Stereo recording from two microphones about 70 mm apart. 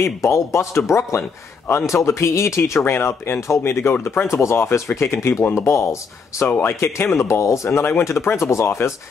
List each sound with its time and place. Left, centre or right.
0.0 s speech: left
4.3 s speech: left